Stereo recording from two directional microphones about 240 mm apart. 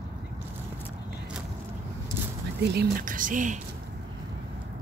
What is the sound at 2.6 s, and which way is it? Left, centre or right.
Speech, right.